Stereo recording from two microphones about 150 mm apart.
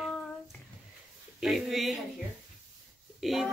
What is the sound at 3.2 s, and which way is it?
Speech, centre (ahead or behind).